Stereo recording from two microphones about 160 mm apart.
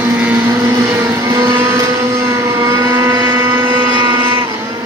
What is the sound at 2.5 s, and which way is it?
Motorboat, 20° right (ahead or behind).